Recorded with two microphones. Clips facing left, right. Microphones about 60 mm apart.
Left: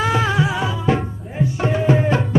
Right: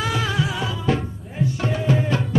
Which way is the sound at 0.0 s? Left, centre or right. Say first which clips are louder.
Left 5 dB; left.